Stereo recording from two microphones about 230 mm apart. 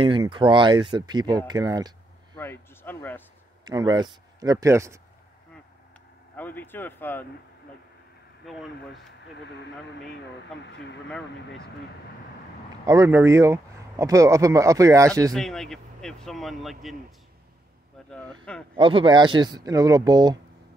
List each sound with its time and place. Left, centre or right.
0.0 s speech: right
2.3 s speech: centre
3.6 s speech: centre
6.3 s speech: centre
8.5 s a man's voice: centre
10.6 s speech: left
11.1 s a man's voice: centre
12.8 s speech: centre
15.3 s a man's voice: centre
18.1 s a man's voice: centre
18.8 s speech: right